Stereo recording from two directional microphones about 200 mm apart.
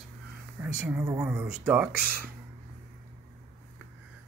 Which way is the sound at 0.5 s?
10° right (ahead or behind).